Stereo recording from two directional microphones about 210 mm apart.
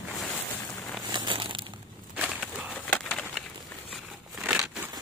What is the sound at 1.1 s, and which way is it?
Crushing, 20° right (ahead or behind).